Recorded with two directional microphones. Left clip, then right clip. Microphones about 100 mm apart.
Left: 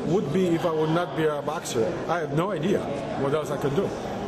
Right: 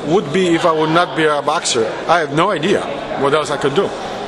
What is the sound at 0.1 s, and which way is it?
A man's voice, 35° right (ahead or behind).